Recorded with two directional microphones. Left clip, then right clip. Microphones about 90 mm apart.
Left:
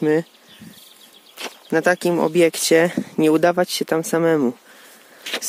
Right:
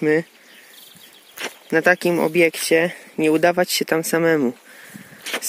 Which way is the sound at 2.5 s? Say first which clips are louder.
Left 2 dB; 90° left.